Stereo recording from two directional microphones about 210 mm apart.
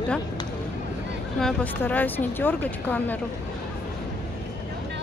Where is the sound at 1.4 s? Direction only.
5° left (ahead or behind).